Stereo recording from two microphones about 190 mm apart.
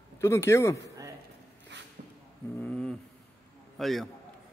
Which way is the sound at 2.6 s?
5° left (ahead or behind).